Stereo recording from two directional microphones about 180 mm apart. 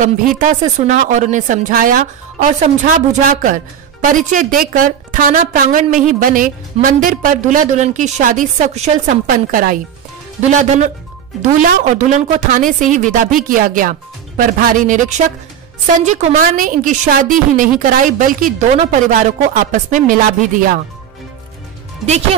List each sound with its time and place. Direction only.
0.4 s a woman's voice: 45° right (ahead or behind)
11.6 s a woman's voice: 45° right (ahead or behind)